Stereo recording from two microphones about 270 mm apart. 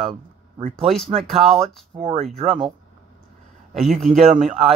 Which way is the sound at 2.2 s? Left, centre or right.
Right.